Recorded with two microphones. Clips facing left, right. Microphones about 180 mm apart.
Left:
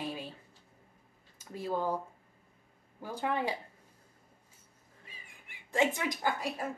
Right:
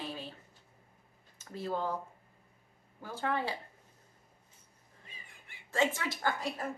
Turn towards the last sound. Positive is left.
turn(degrees=10)  # may be behind; listen again after turning